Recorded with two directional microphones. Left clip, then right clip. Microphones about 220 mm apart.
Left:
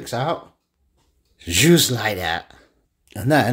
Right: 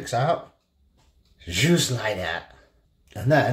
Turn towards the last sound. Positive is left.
turn(degrees=45)  # may be behind; listen again after turning